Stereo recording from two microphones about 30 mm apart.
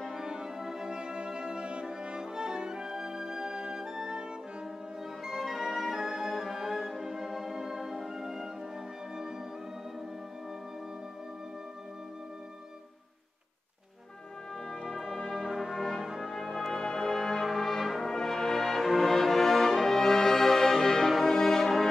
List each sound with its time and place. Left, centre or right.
0.1 s music: right
0.8 s music: right
5.2 s music: centre
6.0 s music: centre
14.9 s brass instrument: centre
15.5 s brass instrument: centre
16.3 s brass instrument: centre
16.7 s music: centre
17.5 s brass instrument: centre
18.1 s brass instrument: centre
18.8 s brass instrument: centre